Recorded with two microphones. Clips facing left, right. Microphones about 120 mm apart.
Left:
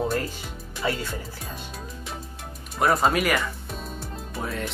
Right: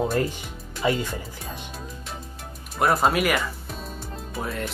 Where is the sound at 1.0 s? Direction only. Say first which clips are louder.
Right 1 dB; 15° right (ahead or behind).